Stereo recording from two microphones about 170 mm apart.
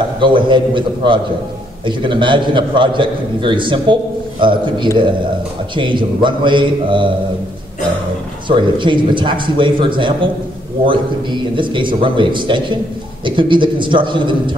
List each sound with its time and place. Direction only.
0.2 s a man's voice: 30° right (ahead or behind)
8.5 s a man's voice: 30° right (ahead or behind)